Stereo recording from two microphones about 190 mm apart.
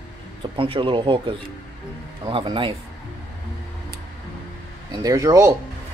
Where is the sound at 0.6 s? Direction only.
25° right (ahead or behind).